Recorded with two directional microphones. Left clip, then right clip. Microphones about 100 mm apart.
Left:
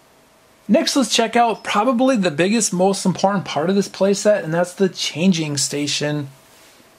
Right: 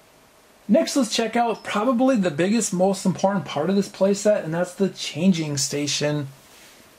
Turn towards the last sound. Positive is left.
turn(degrees=5)  # may be behind; listen again after turning